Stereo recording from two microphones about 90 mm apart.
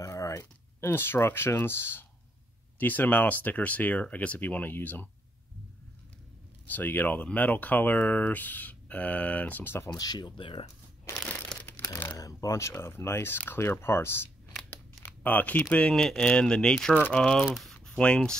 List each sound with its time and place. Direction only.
0.0 s speech: 35° left (ahead or behind)
6.7 s speech: 20° left (ahead or behind)
9.8 s speech: 50° left (ahead or behind); by 10.6 s 70° left (ahead or behind)
11.6 s crumpling: 25° left (ahead or behind)
12.2 s speech: 40° left (ahead or behind); by 17.7 s centre (ahead or behind)
17.7 s a sound: 10° left (ahead or behind)